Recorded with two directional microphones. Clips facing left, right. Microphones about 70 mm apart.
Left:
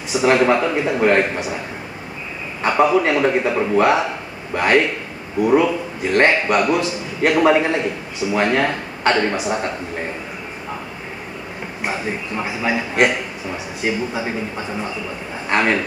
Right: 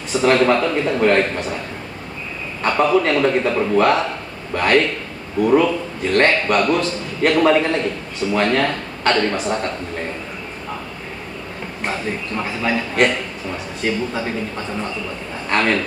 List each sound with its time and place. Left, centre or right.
0.1 s a man's voice: centre
2.6 s a man's voice: centre
11.8 s a man's voice: centre